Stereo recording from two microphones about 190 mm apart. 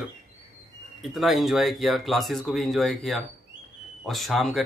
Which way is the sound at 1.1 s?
Centre (ahead or behind).